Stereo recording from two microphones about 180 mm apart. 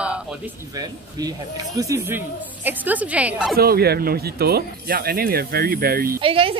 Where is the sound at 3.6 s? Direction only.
60° right (ahead or behind).